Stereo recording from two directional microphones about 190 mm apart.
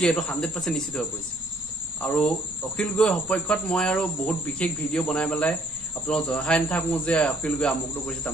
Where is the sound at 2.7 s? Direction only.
Centre (ahead or behind).